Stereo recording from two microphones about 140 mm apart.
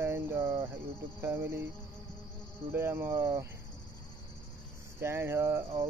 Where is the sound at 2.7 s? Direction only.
20° right (ahead or behind).